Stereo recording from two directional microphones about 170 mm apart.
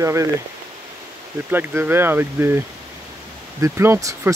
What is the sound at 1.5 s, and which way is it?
Speech, 10° right (ahead or behind).